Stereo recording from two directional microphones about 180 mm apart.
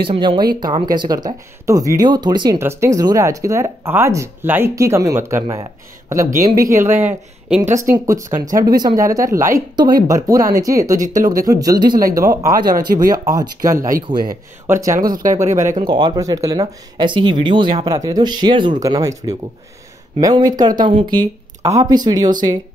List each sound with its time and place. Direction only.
0.0 s speech: 30° right (ahead or behind)
11.0 s speech: 50° right (ahead or behind)
12.2 s speech: 20° right (ahead or behind)
14.1 s speech: 45° right (ahead or behind)
14.7 s speech: 15° right (ahead or behind)
15.0 s speech: 50° right (ahead or behind)
15.8 s speech: 25° right (ahead or behind)